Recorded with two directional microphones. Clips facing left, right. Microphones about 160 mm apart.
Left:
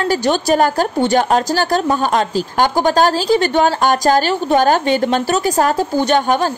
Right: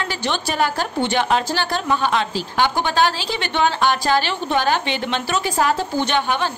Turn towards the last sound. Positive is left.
turn(degrees=40)  # may be behind; listen again after turning